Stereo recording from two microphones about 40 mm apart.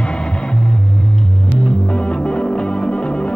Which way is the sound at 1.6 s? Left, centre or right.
Left.